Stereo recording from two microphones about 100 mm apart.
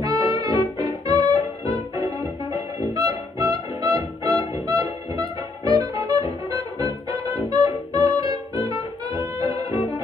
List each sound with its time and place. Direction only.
0.0 s music: 35° right (ahead or behind)